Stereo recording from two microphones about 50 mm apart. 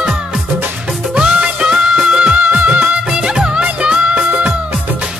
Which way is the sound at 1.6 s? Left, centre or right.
Centre.